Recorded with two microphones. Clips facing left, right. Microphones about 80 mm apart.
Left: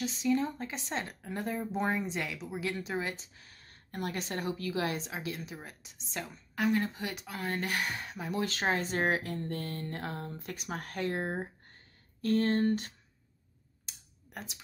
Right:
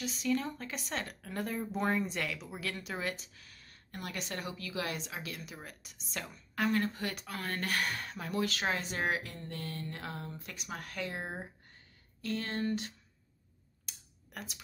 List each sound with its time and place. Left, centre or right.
0.0 s speech: left
8.4 s speech: left
13.8 s a sound: left